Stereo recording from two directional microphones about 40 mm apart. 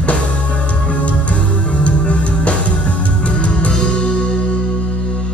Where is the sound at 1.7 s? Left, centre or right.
Left.